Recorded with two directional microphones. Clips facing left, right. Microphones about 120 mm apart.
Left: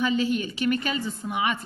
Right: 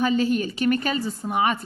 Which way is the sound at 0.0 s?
40° right (ahead or behind).